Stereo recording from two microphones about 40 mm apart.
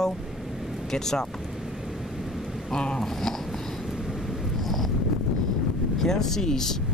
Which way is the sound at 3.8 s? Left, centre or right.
Centre.